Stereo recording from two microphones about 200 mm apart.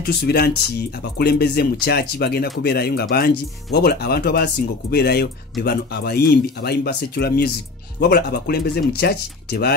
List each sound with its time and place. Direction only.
0.0 s speech: 55° left (ahead or behind)